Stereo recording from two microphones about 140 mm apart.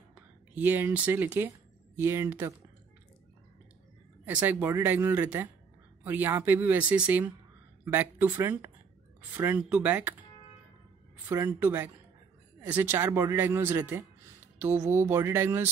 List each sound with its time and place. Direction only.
0.1 s speech: 15° right (ahead or behind)
4.3 s speech: 10° right (ahead or behind)
11.2 s speech: 20° right (ahead or behind)